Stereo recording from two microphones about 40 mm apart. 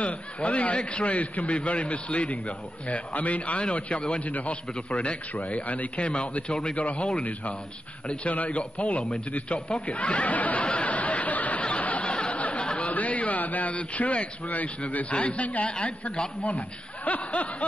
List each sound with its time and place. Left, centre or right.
0.0 s a man's voice: left
5.9 s a man's voice: left
6.8 s a man's voice: left
8.1 s a man's voice: left
9.8 s snicker: left
12.1 s a sound: left
12.4 s a sound: left
12.6 s a man's voice: left